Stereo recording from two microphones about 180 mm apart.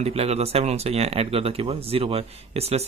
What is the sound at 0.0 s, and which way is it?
Speech, 35° right (ahead or behind).